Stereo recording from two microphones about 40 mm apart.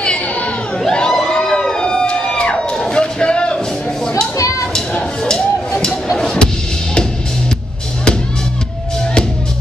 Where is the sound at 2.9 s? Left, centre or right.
Left.